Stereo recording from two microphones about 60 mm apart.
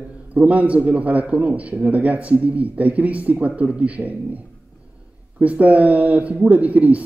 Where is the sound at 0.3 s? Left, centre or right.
Right.